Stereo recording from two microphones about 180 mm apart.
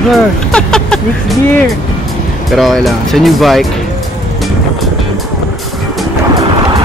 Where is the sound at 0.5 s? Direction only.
5° left (ahead or behind).